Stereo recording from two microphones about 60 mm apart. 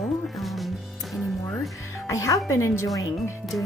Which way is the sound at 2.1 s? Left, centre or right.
Left.